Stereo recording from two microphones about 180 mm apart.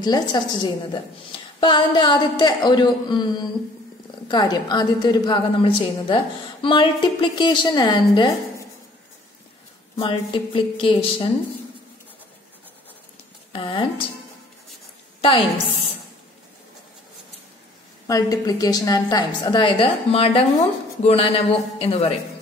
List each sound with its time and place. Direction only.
0.0 s a woman's voice: 25° left (ahead or behind)
9.9 s a woman's voice: 30° left (ahead or behind)
13.5 s speech: 25° left (ahead or behind)
15.2 s a woman's voice: 30° left (ahead or behind)
18.0 s a woman's voice: 20° left (ahead or behind)